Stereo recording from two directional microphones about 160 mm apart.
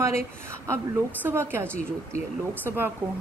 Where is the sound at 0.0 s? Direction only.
15° right (ahead or behind).